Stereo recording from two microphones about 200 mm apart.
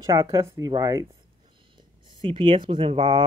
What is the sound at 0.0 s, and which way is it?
Speech, 15° right (ahead or behind).